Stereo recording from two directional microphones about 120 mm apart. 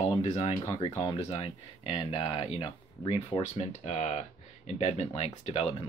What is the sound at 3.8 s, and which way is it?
Speech, 70° left (ahead or behind).